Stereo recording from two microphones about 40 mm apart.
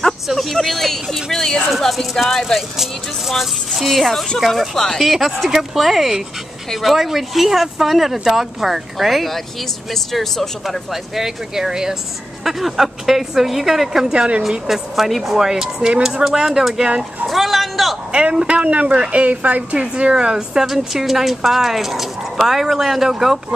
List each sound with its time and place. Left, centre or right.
0.3 s speech: centre
10.9 s speech: centre
14.1 s a man's voice: right
14.7 s speech: centre
18.1 s a man's voice: right
18.6 s a woman's voice: right; by 20.6 s centre
20.6 s speech: centre